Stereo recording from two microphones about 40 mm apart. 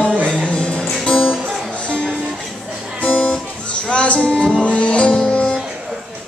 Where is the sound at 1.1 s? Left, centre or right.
Left.